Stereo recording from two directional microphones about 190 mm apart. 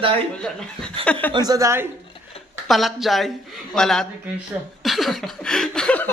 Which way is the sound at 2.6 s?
Centre (ahead or behind).